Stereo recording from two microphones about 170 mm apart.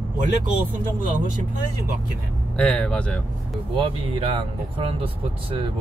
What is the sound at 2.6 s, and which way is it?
Speech, 5° left (ahead or behind).